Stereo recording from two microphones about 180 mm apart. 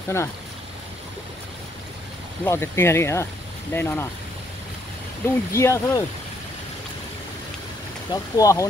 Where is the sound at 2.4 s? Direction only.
15° left (ahead or behind).